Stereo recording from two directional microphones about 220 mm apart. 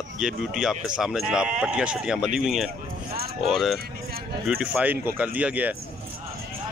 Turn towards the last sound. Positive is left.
turn(degrees=-5)  # may be behind; listen again after turning